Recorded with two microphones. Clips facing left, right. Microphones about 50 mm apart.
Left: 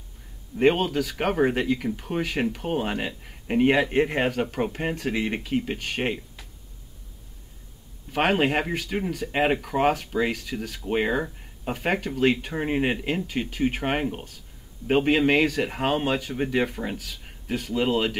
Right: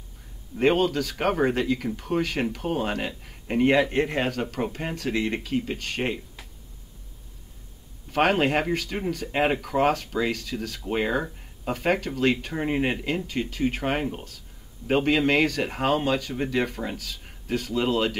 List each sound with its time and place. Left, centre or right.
0.6 s speech: centre
8.1 s speech: centre